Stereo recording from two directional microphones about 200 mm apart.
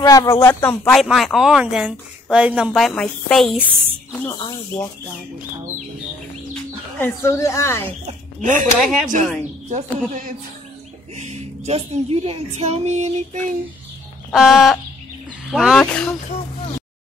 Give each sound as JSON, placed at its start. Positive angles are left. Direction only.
{"t": 0.0, "sound": "speech", "side_deg": 15}
{"t": 4.1, "sound": "a woman's voice", "side_deg": 10}
{"t": 7.0, "sound": "a woman's voice", "side_deg": 15}
{"t": 8.0, "sound": "speech", "side_deg": -35}
{"t": 8.7, "sound": "speech", "side_deg": 0}
{"t": 9.7, "sound": "speech", "side_deg": -40}
{"t": 14.3, "sound": "speech", "side_deg": 0}